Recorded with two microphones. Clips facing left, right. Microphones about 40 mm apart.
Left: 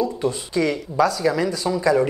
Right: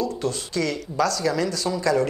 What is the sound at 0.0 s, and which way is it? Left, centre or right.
Speech, centre.